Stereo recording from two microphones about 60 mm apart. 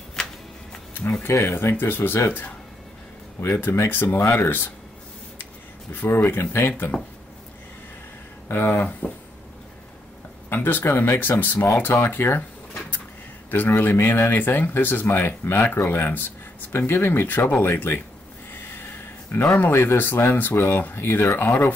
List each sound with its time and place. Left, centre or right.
0.2 s a sound: centre
1.2 s speech: left
5.9 s speech: left
6.9 s speech: centre
8.5 s speech: left
10.5 s speech: left
13.5 s speech: left
19.4 s speech: left
19.7 s speech: left